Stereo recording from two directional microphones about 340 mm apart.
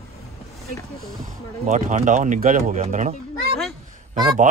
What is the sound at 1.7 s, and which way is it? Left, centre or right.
Speech, centre.